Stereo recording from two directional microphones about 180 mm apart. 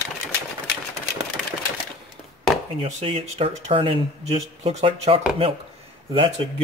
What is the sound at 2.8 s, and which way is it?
Speech, 30° right (ahead or behind).